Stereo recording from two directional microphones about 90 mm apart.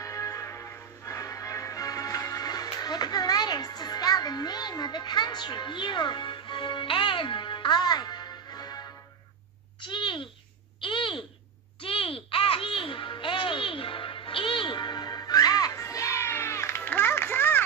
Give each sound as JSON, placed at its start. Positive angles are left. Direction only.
{"t": 0.0, "sound": "music", "side_deg": 35}
{"t": 9.8, "sound": "babbling", "side_deg": 65}
{"t": 11.8, "sound": "music", "side_deg": 90}